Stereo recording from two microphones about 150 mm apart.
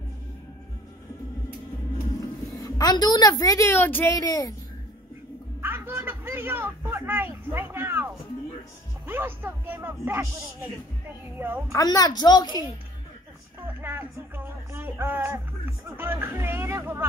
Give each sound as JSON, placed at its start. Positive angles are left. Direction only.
{"t": 2.1, "sound": "a woman's voice", "side_deg": 25}
{"t": 4.1, "sound": "a child's voice", "side_deg": 25}
{"t": 5.6, "sound": "a sound", "side_deg": -15}
{"t": 9.0, "sound": "speech", "side_deg": -15}
{"t": 11.3, "sound": "speech", "side_deg": -15}
{"t": 11.7, "sound": "a child's voice", "side_deg": 25}
{"t": 13.6, "sound": "speech", "side_deg": -15}